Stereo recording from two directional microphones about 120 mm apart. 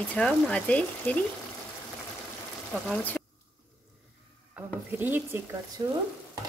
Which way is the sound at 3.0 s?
15° left (ahead or behind).